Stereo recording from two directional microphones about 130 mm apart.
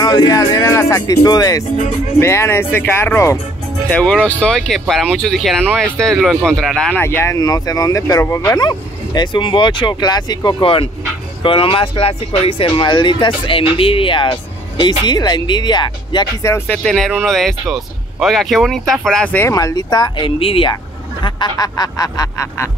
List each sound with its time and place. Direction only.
0.0 s speech: 30° left (ahead or behind); by 6.9 s centre (ahead or behind)
7.0 s speech: 15° left (ahead or behind); by 16.3 s 35° left (ahead or behind)
16.4 s speech: 20° left (ahead or behind)
16.7 s speech: 5° left (ahead or behind)
19.5 s speech: 25° left (ahead or behind); by 20.7 s 45° left (ahead or behind)
21.2 s speech: 35° left (ahead or behind)